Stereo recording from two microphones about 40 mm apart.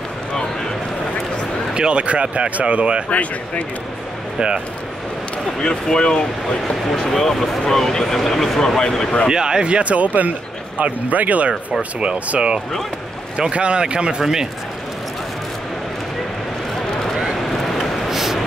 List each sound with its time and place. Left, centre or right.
1.7 s speech: right
3.1 s speech: left
5.6 s speech: left
7.1 s speech: centre
9.3 s speech: centre; by 11.5 s right
12.0 s speech: right
17.2 s vehicle: centre
17.8 s a sound: centre